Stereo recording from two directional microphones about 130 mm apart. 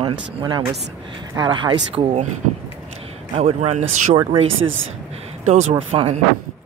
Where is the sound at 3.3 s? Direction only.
55° right (ahead or behind).